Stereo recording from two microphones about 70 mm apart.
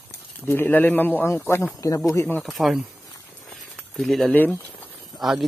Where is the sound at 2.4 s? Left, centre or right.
Centre.